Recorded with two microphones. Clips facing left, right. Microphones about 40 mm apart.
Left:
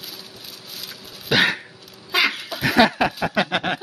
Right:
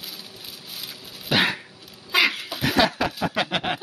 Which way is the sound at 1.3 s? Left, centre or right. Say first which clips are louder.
Left 3 dB; left.